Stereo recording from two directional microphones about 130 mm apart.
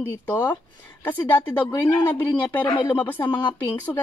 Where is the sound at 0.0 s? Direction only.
15° left (ahead or behind).